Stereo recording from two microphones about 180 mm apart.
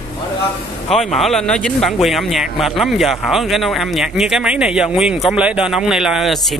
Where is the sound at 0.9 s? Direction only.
Centre (ahead or behind).